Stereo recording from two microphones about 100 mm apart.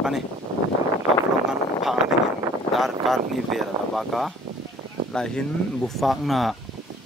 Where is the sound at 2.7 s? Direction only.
Centre (ahead or behind).